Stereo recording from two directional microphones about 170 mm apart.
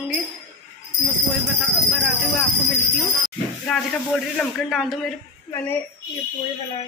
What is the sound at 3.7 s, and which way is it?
Speech, centre (ahead or behind).